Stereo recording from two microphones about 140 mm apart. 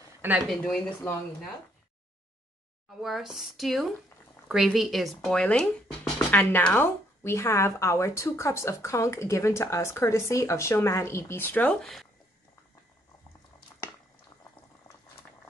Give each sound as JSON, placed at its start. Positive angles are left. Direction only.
{"t": 0.5, "sound": "speech", "side_deg": 5}
{"t": 3.0, "sound": "a woman's voice", "side_deg": 0}
{"t": 11.8, "sound": "speech", "side_deg": 0}